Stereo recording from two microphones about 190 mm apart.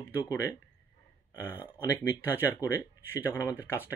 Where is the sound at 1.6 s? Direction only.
10° left (ahead or behind).